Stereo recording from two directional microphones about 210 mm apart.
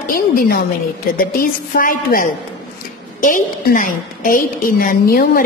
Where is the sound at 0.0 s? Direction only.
45° left (ahead or behind).